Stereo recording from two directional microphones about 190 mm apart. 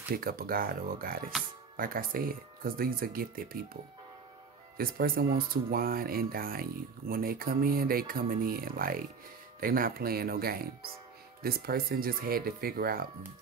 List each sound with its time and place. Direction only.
0.2 s speech: 50° right (ahead or behind)
4.7 s speech: 50° right (ahead or behind)